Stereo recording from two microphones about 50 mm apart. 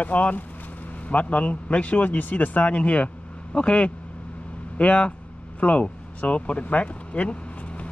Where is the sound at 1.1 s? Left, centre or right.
Left.